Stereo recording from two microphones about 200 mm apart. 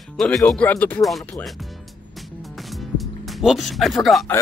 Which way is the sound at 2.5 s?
Centre (ahead or behind).